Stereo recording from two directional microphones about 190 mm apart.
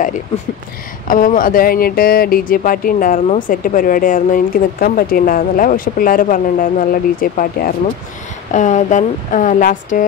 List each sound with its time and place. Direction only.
1.0 s speech: 45° left (ahead or behind)